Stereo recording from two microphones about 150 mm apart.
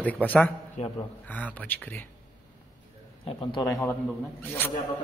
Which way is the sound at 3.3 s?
35° left (ahead or behind).